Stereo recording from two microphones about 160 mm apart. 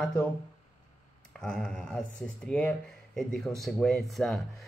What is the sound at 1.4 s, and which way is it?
A man's voice, 5° left (ahead or behind).